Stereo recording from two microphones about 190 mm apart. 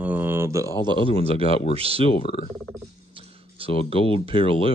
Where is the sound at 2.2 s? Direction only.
25° left (ahead or behind).